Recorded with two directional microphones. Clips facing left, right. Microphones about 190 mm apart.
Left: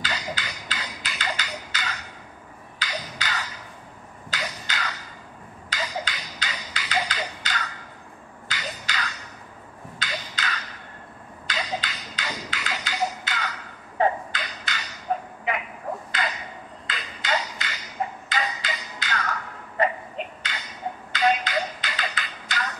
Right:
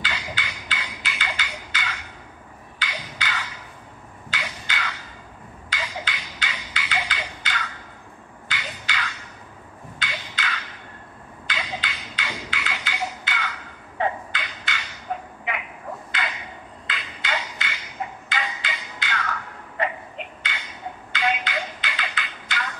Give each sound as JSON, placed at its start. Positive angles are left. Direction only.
{"t": 0.0, "sound": "music", "side_deg": 40}
{"t": 9.9, "sound": "wood block", "side_deg": 40}
{"t": 11.4, "sound": "music", "side_deg": 40}
{"t": 15.5, "sound": "a sound", "side_deg": 40}
{"t": 16.8, "sound": "music", "side_deg": 40}
{"t": 19.8, "sound": "a sound", "side_deg": 40}